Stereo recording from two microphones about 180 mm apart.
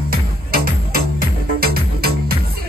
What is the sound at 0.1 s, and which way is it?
Music, 55° right (ahead or behind).